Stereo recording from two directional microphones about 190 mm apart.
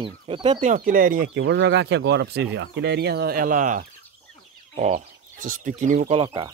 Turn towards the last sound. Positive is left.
turn(degrees=-25)  # may be behind; listen again after turning